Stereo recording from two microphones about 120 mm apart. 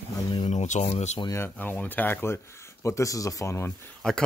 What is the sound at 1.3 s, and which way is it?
Speech, 20° left (ahead or behind).